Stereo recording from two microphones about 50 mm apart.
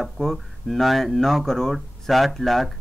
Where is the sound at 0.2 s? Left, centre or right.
Centre.